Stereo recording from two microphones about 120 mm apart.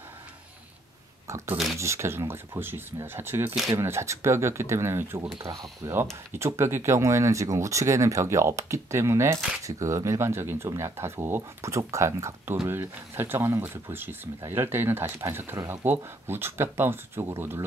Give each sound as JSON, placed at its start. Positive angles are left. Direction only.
{"t": 1.2, "sound": "speech", "side_deg": -25}